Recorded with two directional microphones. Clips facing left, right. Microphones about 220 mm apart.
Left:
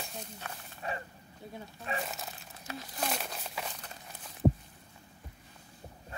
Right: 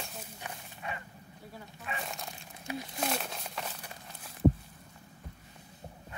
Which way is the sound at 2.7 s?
15° right (ahead or behind).